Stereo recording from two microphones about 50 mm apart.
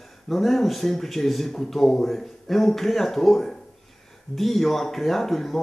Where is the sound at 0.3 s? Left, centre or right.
Centre.